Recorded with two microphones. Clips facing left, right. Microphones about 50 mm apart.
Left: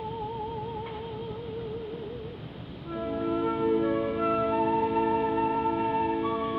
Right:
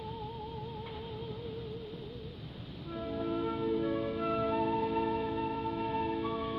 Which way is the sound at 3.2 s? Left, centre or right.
Centre.